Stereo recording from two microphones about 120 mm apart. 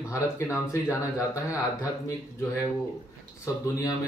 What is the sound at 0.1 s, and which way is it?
Speech, 25° left (ahead or behind).